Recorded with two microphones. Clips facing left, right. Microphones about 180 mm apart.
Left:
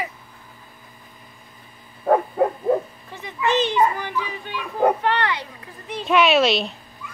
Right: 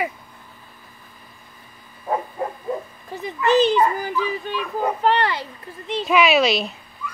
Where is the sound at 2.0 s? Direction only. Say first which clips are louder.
Left 7 dB; 55° left (ahead or behind).